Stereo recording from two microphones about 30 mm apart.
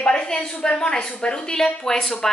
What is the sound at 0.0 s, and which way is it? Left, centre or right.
A woman's voice, left.